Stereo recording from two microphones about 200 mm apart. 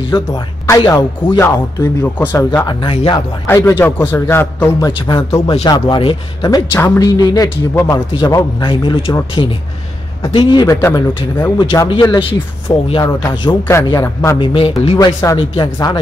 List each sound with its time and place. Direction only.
0.1 s a man's voice: 20° left (ahead or behind)
2.8 s speech: 25° left (ahead or behind)
3.4 s a man's voice: 15° left (ahead or behind)
14.4 s speech: 25° left (ahead or behind)